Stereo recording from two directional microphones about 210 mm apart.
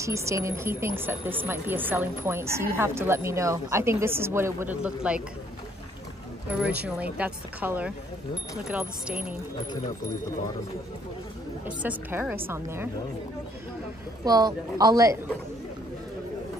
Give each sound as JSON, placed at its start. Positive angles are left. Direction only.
{"t": 0.0, "sound": "speech", "side_deg": -15}
{"t": 7.2, "sound": "speech", "side_deg": -5}
{"t": 11.6, "sound": "speech", "side_deg": -5}
{"t": 14.2, "sound": "speech", "side_deg": -20}